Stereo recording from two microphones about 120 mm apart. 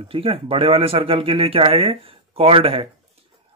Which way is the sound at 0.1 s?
50° right (ahead or behind).